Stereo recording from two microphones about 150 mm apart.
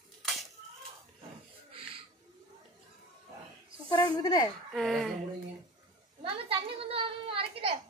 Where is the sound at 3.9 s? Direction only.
25° left (ahead or behind).